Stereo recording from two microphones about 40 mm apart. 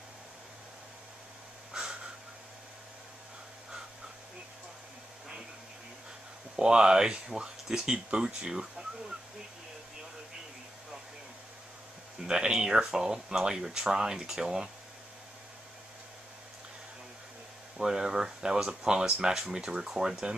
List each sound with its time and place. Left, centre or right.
1.7 s a sound: right
6.5 s speech: centre
12.3 s speech: centre
17.7 s speech: centre